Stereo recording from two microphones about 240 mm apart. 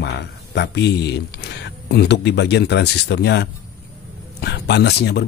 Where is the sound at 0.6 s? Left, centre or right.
Left.